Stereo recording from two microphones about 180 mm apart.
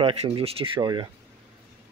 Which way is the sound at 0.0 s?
30° right (ahead or behind).